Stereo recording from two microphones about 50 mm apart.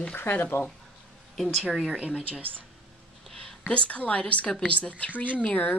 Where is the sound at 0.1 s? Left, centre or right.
Left.